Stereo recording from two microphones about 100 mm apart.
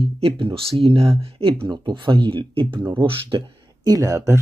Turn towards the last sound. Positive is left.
turn(degrees=-30)  # may be behind; listen again after turning